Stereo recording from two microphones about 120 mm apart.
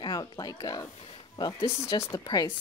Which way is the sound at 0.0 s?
35° left (ahead or behind).